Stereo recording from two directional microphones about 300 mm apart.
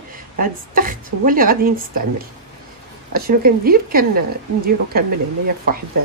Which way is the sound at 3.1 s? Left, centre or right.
Right.